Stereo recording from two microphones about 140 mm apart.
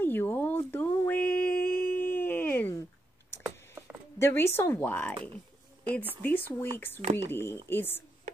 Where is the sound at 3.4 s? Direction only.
15° right (ahead or behind).